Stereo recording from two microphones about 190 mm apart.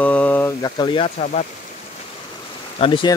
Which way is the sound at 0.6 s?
25° left (ahead or behind).